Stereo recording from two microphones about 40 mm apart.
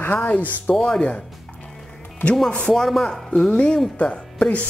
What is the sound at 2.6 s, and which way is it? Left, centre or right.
Speech, centre.